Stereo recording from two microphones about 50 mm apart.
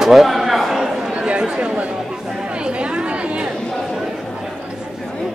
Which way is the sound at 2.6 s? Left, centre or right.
Right.